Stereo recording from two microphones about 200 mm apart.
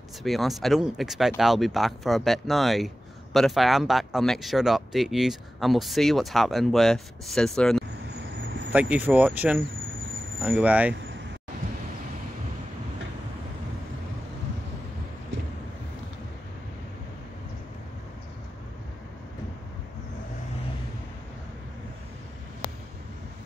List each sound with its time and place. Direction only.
0.2 s speech: centre (ahead or behind)
8.4 s a sound: 65° right (ahead or behind)
8.7 s speech: 5° right (ahead or behind)